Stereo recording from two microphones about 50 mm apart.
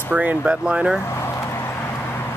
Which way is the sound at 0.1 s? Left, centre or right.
Right.